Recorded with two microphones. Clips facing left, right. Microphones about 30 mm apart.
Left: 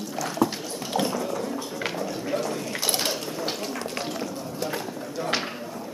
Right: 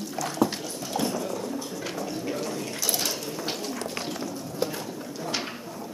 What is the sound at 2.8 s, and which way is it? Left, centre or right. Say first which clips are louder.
Mechanisms: left 2 dB; left.